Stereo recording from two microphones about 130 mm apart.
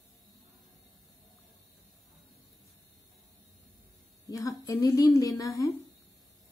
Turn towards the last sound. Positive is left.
turn(degrees=25)  # may be behind; listen again after turning